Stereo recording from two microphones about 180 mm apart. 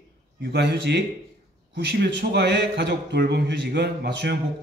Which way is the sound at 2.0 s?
65° right (ahead or behind).